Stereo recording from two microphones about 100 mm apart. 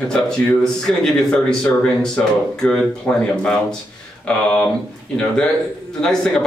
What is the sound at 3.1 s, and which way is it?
Speech, 20° left (ahead or behind).